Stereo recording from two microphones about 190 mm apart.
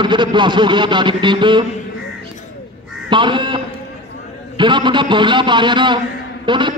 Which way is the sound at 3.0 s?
25° right (ahead or behind).